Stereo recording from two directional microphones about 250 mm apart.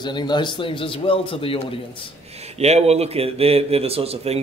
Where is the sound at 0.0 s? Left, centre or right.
Centre.